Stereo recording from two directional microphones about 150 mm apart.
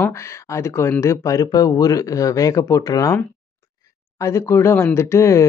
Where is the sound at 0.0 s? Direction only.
20° left (ahead or behind).